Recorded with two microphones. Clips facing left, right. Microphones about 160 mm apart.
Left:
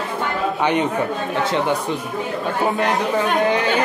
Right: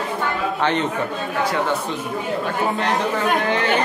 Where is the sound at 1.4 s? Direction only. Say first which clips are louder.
Left 1 dB; 25° left (ahead or behind).